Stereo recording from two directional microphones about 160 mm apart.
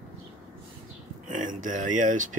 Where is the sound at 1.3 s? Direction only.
55° right (ahead or behind).